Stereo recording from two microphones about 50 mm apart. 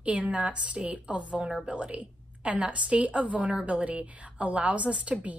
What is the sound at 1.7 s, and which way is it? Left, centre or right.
A woman's voice, right.